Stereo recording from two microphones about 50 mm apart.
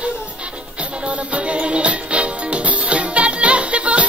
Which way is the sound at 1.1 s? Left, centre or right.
Right.